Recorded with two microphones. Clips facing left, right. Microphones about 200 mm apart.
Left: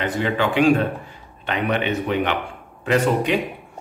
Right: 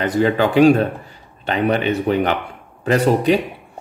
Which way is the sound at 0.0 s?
40° right (ahead or behind).